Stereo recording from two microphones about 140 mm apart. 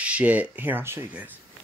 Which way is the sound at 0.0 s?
10° right (ahead or behind).